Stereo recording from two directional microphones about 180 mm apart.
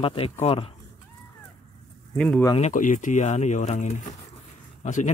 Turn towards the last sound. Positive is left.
turn(degrees=45)  # may be behind; listen again after turning